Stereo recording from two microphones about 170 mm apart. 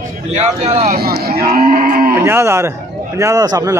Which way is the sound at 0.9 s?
65° right (ahead or behind).